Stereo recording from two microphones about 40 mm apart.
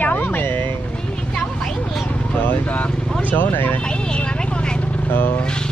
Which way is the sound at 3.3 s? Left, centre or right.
Left.